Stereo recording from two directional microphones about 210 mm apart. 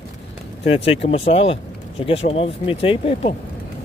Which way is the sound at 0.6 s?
30° left (ahead or behind).